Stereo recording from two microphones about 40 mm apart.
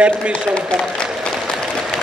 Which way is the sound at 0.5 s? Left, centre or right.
Left.